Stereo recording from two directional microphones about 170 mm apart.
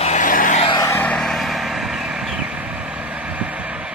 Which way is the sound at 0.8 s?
15° left (ahead or behind).